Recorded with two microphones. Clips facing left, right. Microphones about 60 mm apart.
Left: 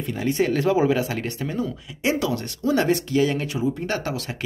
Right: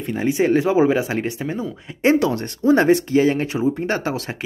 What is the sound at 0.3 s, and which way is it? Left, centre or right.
Speech, centre.